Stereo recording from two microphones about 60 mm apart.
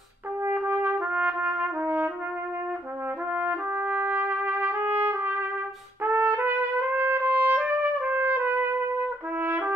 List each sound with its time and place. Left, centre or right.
0.5 s trumpet: right
3.3 s trumpet: right
9.4 s brass instrument: right